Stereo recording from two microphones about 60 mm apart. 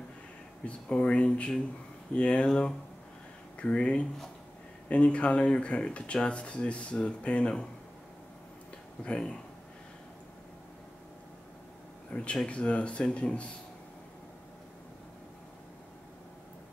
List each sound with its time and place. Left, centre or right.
0.7 s speech: centre
12.1 s speech: left